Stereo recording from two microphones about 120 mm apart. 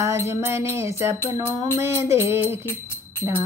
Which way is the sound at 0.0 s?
25° right (ahead or behind).